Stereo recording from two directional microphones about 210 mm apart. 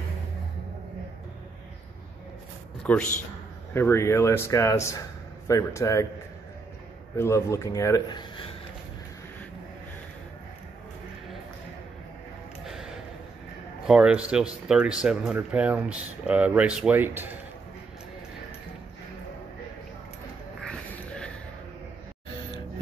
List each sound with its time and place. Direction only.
2.8 s speech: 5° left (ahead or behind)
7.2 s speech: 15° left (ahead or behind)
13.8 s speech: 5° right (ahead or behind)
20.6 s a sound: 5° left (ahead or behind)